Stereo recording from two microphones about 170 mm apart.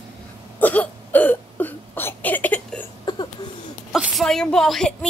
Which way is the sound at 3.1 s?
25° left (ahead or behind).